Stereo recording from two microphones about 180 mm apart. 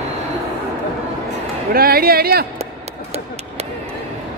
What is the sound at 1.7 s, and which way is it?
Speech, 55° right (ahead or behind).